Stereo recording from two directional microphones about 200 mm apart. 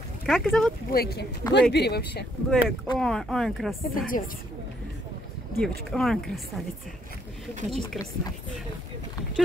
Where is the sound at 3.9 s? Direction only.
45° left (ahead or behind).